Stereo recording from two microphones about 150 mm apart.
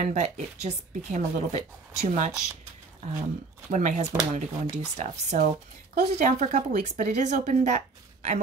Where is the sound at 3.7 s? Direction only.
55° right (ahead or behind).